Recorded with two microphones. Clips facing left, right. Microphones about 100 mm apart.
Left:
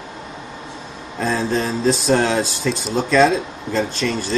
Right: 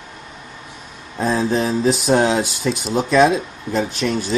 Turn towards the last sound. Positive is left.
turn(degrees=-15)  # may be behind; listen again after turning